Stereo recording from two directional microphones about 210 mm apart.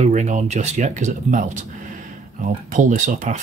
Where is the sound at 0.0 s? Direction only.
35° right (ahead or behind).